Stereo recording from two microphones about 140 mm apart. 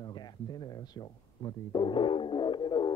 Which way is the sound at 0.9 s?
30° left (ahead or behind).